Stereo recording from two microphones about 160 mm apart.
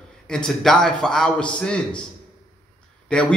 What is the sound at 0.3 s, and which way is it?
A man's voice, 5° left (ahead or behind).